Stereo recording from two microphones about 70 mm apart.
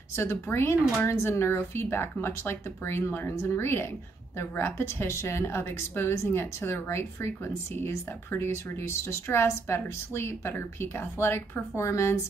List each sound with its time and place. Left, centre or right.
0.1 s a woman's voice: left